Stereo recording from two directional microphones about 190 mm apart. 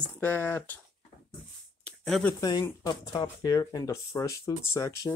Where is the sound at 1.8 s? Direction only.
5° left (ahead or behind).